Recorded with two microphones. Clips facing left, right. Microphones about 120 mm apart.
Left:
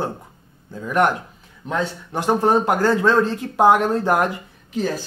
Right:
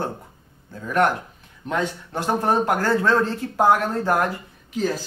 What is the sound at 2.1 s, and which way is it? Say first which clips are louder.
Speech: left 4 dB; 15° left (ahead or behind).